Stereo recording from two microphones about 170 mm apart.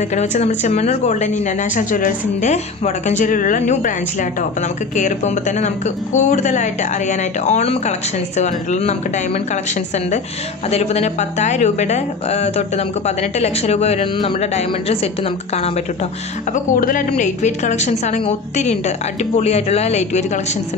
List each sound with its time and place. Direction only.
0.1 s a woman's voice: 40° left (ahead or behind)
16.7 s a woman's voice: 55° left (ahead or behind)
17.1 s speech: 45° left (ahead or behind)